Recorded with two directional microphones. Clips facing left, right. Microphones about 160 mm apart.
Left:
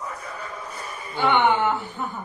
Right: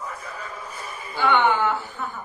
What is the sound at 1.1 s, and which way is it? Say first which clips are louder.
Speech: even; 20° left (ahead or behind).